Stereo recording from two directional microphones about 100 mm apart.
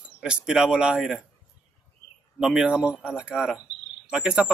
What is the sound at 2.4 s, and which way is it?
Speech, 5° right (ahead or behind).